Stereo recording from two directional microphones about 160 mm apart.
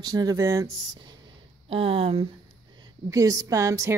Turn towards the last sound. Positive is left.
turn(degrees=-20)  # may be behind; listen again after turning